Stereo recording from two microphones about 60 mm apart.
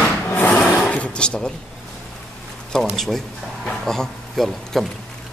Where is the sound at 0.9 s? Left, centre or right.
Centre.